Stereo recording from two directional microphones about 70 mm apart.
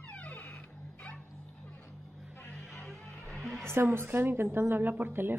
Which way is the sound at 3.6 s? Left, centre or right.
Right.